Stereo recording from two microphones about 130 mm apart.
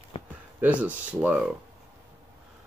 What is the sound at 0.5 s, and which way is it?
Speech, 10° right (ahead or behind).